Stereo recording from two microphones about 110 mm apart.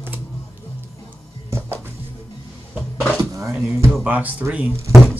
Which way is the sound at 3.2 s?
30° right (ahead or behind).